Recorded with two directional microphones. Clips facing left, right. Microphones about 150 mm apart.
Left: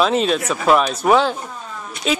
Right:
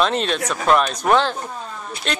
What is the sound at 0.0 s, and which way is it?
Speech, 5° left (ahead or behind).